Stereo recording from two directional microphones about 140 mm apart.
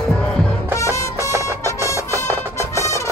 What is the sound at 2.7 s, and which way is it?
Music, 20° left (ahead or behind).